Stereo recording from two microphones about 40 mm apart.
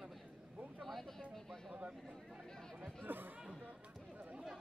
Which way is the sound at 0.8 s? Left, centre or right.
Centre.